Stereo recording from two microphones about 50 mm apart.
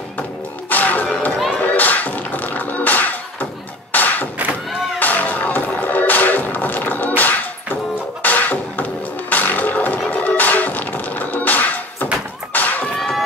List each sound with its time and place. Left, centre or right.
0.7 s music: left
1.1 s a sound: left
1.6 s music: left
3.9 s thump: left
4.9 s music: left
12.5 s a sound: left